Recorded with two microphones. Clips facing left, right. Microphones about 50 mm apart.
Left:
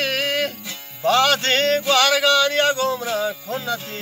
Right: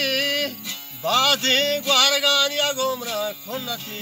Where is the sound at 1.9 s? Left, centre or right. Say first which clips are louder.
Left 3 dB; left.